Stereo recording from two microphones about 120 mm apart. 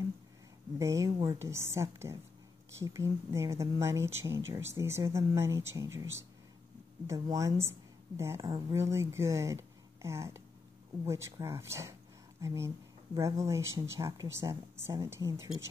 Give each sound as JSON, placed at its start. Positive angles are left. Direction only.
{"t": 0.7, "sound": "speech", "side_deg": -25}